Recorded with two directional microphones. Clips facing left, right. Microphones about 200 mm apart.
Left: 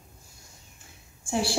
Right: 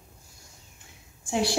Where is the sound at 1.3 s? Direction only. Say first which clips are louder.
Right 1 dB; 20° right (ahead or behind).